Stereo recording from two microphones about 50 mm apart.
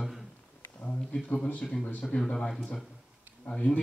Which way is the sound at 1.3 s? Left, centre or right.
Left.